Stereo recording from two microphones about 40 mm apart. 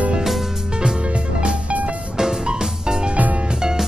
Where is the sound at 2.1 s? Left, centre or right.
Centre.